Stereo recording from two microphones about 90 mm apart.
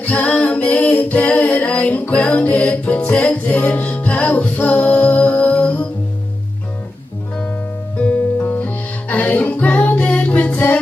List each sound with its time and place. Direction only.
0.0 s singing: 15° left (ahead or behind)
8.0 s music: 20° left (ahead or behind)